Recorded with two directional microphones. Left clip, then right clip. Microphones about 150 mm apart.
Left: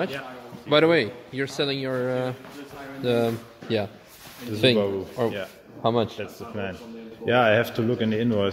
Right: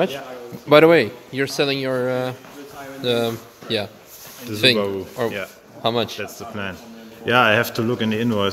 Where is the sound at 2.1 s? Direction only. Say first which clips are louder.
Right 4 dB; 20° right (ahead or behind).